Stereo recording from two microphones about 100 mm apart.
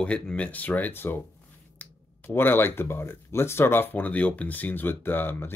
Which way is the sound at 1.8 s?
20° left (ahead or behind).